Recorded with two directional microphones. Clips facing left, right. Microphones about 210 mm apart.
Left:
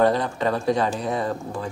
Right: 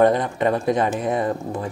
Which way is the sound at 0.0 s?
20° right (ahead or behind).